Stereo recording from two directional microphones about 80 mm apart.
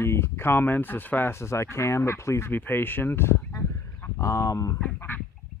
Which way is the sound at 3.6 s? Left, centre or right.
Left.